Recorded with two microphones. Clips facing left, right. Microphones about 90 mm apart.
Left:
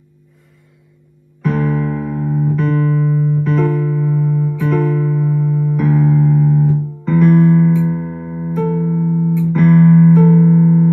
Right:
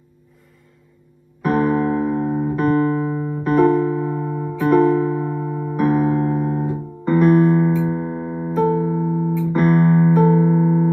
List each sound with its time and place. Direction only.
1.4 s music: 50° right (ahead or behind); by 2.4 s 30° right (ahead or behind)
2.6 s music: 45° right (ahead or behind)
3.1 s music: 30° right (ahead or behind)
5.8 s electric piano: 40° right (ahead or behind)
7.2 s music: 20° right (ahead or behind)
9.8 s music: 40° right (ahead or behind)
10.0 s music: 20° right (ahead or behind)